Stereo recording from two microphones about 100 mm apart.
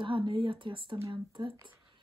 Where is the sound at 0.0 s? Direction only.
55° right (ahead or behind).